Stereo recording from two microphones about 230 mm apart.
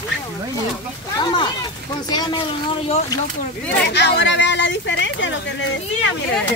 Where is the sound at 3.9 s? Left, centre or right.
Left.